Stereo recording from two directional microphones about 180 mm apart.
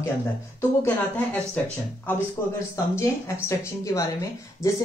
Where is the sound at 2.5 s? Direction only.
15° left (ahead or behind).